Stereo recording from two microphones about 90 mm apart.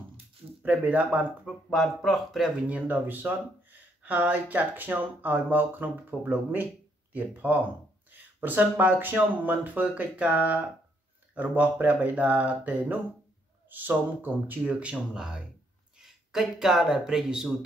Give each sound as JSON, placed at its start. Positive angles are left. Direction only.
{"t": 0.6, "sound": "speech", "side_deg": -20}
{"t": 1.4, "sound": "speech", "side_deg": 5}
{"t": 2.7, "sound": "speech", "side_deg": -20}